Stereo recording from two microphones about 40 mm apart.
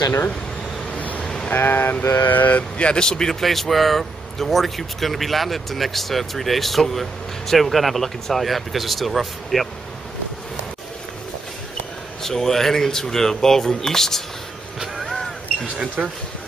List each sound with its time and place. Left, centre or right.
0.9 s vehicle: left
1.2 s sheep: centre
1.5 s speech: left
2.8 s a man's voice: left; by 9.7 s centre
12.2 s speech: centre
14.8 s music: centre
15.6 s speech: right